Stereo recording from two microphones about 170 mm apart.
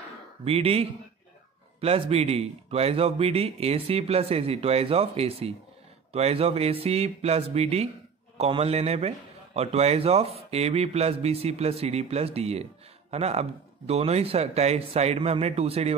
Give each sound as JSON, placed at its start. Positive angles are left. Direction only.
{"t": 0.5, "sound": "speech", "side_deg": -35}